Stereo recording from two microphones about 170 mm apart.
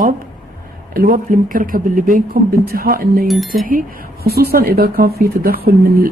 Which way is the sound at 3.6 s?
60° right (ahead or behind).